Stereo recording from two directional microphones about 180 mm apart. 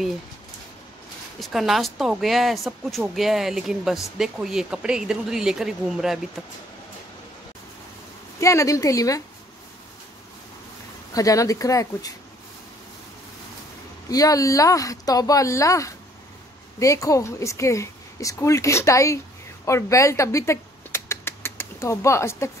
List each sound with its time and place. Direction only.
1.4 s speech: centre (ahead or behind)
8.4 s speech: 15° left (ahead or behind)
11.1 s speech: 20° left (ahead or behind)
14.0 s speech: 20° left (ahead or behind)
19.6 s a sound: 15° left (ahead or behind)